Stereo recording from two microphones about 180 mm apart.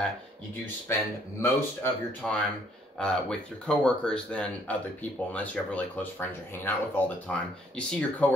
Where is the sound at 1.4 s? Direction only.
10° left (ahead or behind).